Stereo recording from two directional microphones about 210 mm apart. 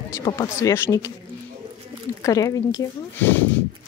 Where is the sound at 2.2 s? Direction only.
15° left (ahead or behind).